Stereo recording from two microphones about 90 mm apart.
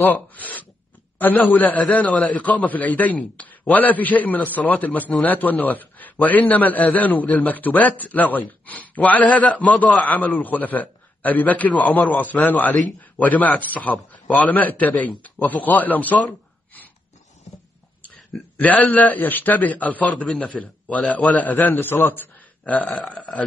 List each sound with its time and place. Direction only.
0.0 s a man's voice: 20° left (ahead or behind)
18.0 s a man's voice: 15° left (ahead or behind)